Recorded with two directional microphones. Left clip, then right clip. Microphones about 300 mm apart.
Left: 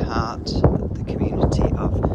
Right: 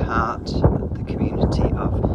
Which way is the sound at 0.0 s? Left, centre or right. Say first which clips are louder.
Right 3 dB; centre.